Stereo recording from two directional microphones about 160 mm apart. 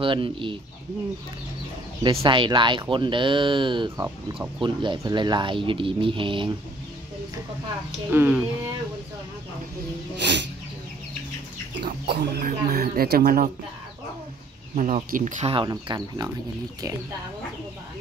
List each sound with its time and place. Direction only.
0.0 s speech: 30° right (ahead or behind)
2.0 s speech: 30° right (ahead or behind)
8.1 s speech: 10° right (ahead or behind)
10.2 s a sound: 90° right
11.8 s speech: 80° right
14.8 s speech: 50° right (ahead or behind)
15.4 s speech: 30° right (ahead or behind)